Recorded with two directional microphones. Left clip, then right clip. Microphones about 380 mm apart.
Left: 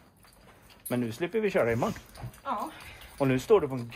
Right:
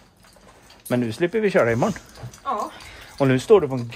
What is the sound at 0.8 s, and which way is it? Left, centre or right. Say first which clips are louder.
Speech: right 9 dB; right.